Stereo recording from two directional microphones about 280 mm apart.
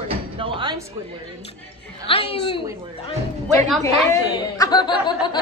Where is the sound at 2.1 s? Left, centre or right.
Centre.